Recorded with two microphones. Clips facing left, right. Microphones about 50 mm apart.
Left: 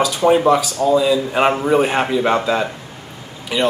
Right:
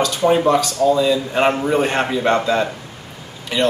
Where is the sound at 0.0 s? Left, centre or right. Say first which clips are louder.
Left 2 dB; centre.